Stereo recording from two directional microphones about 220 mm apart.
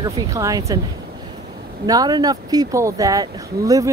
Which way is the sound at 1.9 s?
15° right (ahead or behind).